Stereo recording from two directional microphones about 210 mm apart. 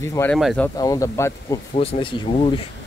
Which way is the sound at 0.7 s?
15° left (ahead or behind).